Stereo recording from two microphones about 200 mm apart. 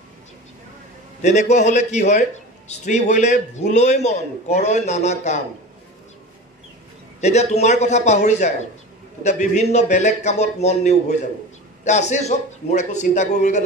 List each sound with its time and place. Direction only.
1.2 s a man's voice: 35° left (ahead or behind)
7.2 s a man's voice: 35° left (ahead or behind)